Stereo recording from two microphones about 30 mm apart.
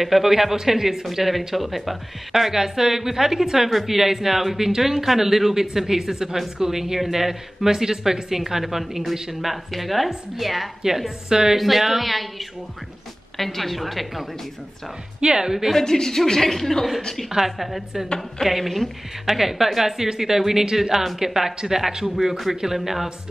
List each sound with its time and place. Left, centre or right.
0.0 s a woman's voice: centre
11.2 s a woman's voice: centre
11.5 s speech: centre
13.4 s speech: centre
15.1 s a woman's voice: right
15.8 s speech: centre
17.6 s a woman's voice: centre